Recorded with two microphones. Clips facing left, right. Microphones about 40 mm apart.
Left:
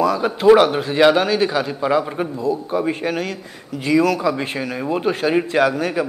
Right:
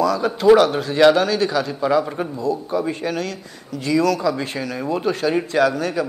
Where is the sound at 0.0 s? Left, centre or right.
Left.